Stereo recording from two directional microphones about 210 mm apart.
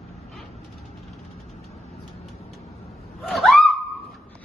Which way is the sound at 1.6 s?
30° left (ahead or behind).